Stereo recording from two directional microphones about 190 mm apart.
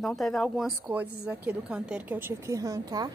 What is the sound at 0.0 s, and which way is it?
A woman's voice, centre (ahead or behind).